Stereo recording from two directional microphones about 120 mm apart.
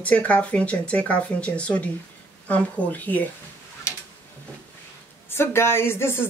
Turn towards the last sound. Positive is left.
turn(degrees=20)  # may be behind; listen again after turning